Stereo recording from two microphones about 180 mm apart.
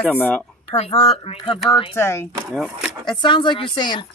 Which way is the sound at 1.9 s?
15° left (ahead or behind).